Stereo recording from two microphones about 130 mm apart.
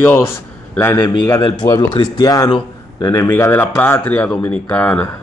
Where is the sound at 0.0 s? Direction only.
20° left (ahead or behind).